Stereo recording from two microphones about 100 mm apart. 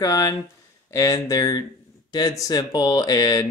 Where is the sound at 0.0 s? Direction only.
35° left (ahead or behind).